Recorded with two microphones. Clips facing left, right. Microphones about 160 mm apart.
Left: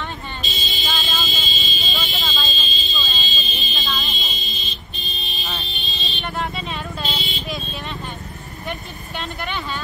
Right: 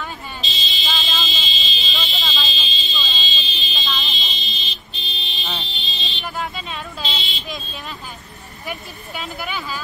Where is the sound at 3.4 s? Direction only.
50° left (ahead or behind).